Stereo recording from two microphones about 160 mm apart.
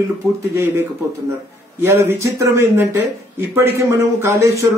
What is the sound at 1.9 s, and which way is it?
A man's voice, 15° right (ahead or behind).